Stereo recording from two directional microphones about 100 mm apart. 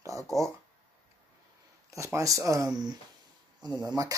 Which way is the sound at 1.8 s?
30° right (ahead or behind).